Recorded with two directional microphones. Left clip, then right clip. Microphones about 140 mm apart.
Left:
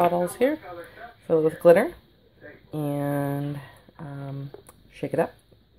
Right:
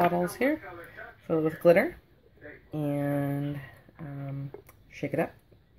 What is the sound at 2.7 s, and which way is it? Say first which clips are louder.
Speech: left 2 dB; 30° left (ahead or behind).